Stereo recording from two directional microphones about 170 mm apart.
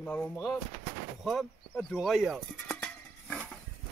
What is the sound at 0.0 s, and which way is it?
Speech, 10° left (ahead or behind).